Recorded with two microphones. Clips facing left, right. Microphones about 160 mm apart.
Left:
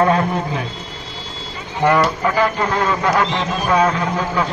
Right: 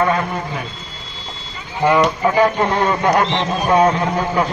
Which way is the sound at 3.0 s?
25° right (ahead or behind).